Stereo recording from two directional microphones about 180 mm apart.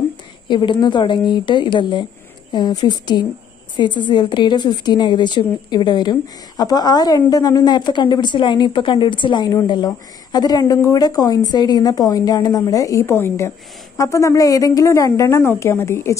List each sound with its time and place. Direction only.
0.5 s a woman's voice: 25° left (ahead or behind)